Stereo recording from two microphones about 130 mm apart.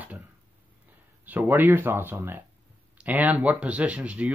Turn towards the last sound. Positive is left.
turn(degrees=-10)  # may be behind; listen again after turning